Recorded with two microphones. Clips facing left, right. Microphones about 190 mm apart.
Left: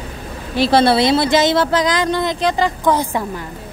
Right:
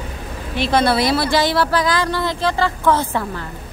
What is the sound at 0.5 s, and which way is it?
Speech, 35° left (ahead or behind).